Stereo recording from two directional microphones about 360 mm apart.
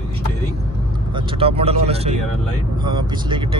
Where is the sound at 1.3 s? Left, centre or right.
Centre.